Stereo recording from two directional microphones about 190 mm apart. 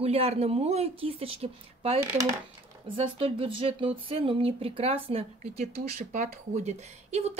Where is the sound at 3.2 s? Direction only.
30° right (ahead or behind).